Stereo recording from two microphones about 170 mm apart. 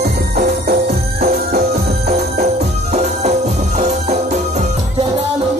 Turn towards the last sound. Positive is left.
turn(degrees=-45)  # may be behind; listen again after turning